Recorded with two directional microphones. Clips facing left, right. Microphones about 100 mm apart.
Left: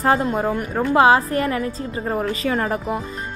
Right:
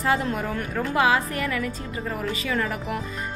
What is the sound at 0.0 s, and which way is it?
A woman's voice, 35° left (ahead or behind).